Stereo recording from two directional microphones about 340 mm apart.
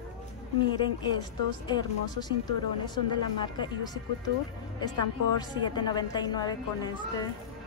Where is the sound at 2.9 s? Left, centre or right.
Centre.